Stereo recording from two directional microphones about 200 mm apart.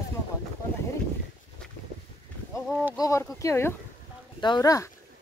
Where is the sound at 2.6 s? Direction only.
Centre (ahead or behind).